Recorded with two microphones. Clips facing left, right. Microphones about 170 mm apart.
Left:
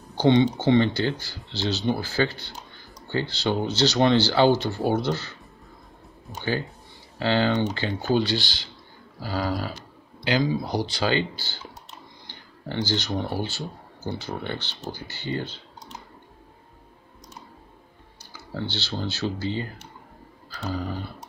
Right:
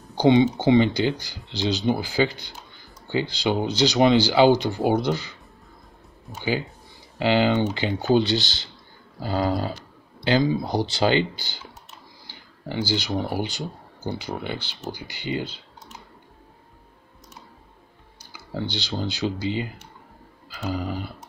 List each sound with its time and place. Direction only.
0.1 s speech: 15° right (ahead or behind)
7.2 s speech: 15° right (ahead or behind)
18.3 s speech: 10° right (ahead or behind)
20.4 s a sound: 10° right (ahead or behind)